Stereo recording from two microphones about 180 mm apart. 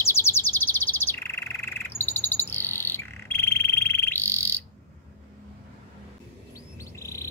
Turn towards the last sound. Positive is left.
turn(degrees=15)  # may be behind; listen again after turning